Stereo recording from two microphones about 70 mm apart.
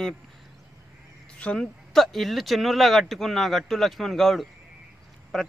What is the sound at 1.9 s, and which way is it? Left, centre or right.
Speech, centre.